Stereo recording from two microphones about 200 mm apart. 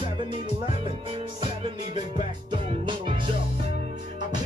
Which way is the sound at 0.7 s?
25° right (ahead or behind).